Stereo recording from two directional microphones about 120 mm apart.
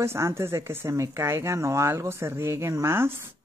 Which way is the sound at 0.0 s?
20° right (ahead or behind).